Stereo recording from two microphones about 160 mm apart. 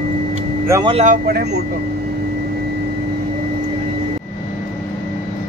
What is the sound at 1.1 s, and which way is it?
Speech, 75° right (ahead or behind).